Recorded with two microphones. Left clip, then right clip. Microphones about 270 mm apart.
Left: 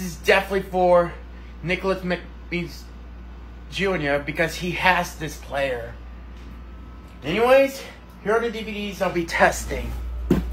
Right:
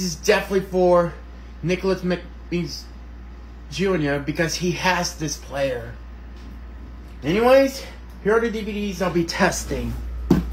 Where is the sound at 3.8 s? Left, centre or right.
Centre.